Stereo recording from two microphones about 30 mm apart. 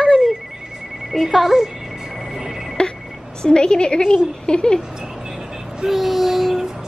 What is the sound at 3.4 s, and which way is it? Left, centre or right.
A woman's voice, left.